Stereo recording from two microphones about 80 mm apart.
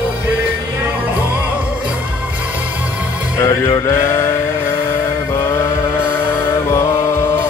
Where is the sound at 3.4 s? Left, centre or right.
Left.